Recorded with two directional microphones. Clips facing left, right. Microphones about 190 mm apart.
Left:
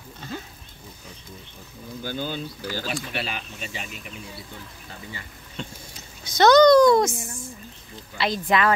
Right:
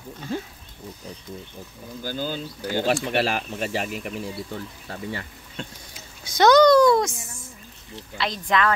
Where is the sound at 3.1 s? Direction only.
75° right (ahead or behind).